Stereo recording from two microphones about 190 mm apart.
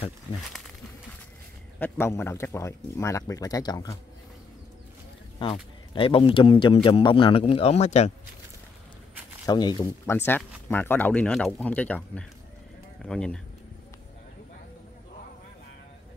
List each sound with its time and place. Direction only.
1.8 s speech: 10° left (ahead or behind)
5.4 s speech: 30° left (ahead or behind)
9.5 s speech: 20° left (ahead or behind); by 13.4 s 5° left (ahead or behind)